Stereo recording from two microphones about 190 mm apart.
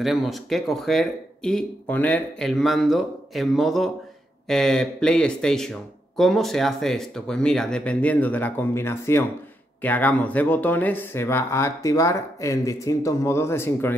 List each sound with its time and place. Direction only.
0.0 s speech: centre (ahead or behind)